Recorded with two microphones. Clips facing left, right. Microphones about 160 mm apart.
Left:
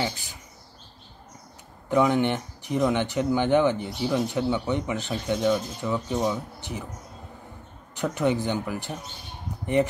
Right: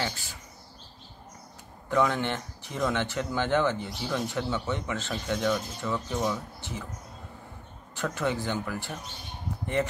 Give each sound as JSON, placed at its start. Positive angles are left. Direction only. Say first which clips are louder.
{"t": 1.9, "sound": "speech", "louder": "left 5 dB", "side_deg": 15}
{"t": 7.9, "sound": "speech", "louder": "left 5 dB", "side_deg": 15}